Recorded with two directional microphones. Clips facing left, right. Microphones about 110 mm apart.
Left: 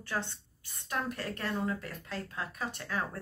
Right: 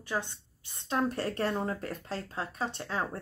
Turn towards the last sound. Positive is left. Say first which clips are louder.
# right 3 dB
turn(degrees=-25)  # may be behind; listen again after turning